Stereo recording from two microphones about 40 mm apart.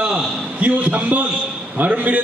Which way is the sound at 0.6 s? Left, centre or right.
Right.